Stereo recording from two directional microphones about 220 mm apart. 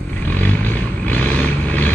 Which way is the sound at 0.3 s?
5° left (ahead or behind).